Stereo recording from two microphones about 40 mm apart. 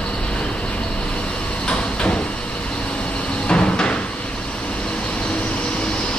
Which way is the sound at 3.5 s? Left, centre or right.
Left.